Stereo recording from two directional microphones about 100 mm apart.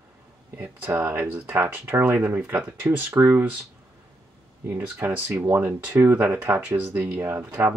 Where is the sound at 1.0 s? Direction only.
15° right (ahead or behind).